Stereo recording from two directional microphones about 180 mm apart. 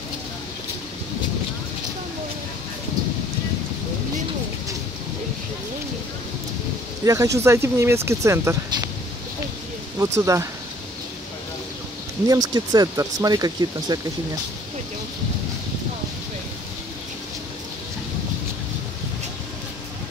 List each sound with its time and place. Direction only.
7.0 s speech: 20° right (ahead or behind)
9.9 s speech: 15° right (ahead or behind)
12.3 s speech: 20° right (ahead or behind)